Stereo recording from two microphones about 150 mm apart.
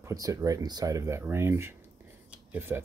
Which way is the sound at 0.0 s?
20° right (ahead or behind).